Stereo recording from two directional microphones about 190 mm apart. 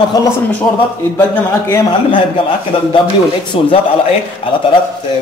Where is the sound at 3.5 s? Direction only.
30° left (ahead or behind).